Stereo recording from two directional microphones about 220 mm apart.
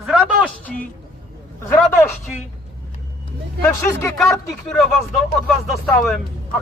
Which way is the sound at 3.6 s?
10° left (ahead or behind).